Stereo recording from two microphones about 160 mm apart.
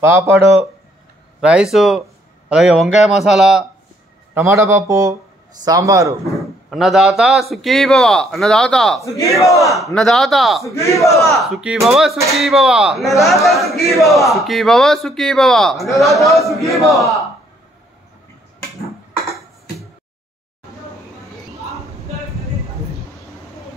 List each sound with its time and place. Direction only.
0.0 s speech: 15° right (ahead or behind)
1.4 s speech: 5° right (ahead or behind)
4.3 s a man's voice: 15° right (ahead or behind)
6.3 s speech: centre (ahead or behind)
9.1 s a man's voice: 20° left (ahead or behind)
9.9 s speech: centre (ahead or behind)
10.7 s a man's voice: 20° left (ahead or behind)
11.3 s speech: centre (ahead or behind)
19.1 s music: centre (ahead or behind)